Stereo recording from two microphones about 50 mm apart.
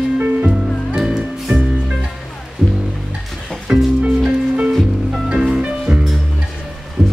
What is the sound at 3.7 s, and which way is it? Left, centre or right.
Music, centre.